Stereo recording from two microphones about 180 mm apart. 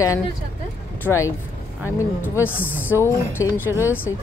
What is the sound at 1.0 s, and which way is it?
A woman's voice, 15° left (ahead or behind).